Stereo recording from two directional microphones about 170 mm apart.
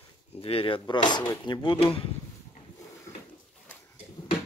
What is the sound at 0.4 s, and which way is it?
Speech, 35° left (ahead or behind).